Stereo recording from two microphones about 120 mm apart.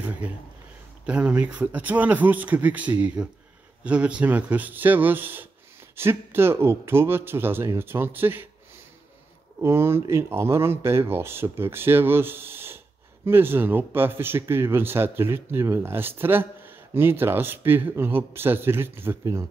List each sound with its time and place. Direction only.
0.0 s speech: 15° right (ahead or behind)
9.6 s speech: 20° right (ahead or behind)